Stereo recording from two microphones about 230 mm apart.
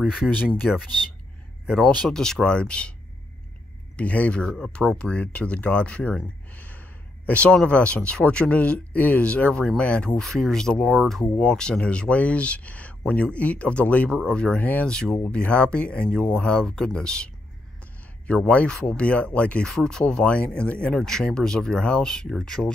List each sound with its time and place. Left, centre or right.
0.0 s speech: centre
2.0 s speech: centre
3.9 s speech: centre